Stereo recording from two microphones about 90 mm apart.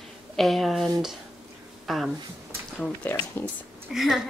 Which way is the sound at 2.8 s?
10° left (ahead or behind).